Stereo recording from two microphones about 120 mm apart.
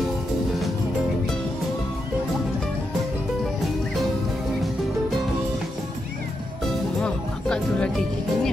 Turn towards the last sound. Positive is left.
turn(degrees=10)  # may be behind; listen again after turning